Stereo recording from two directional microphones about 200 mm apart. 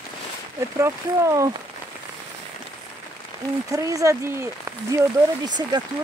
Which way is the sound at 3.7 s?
15° right (ahead or behind).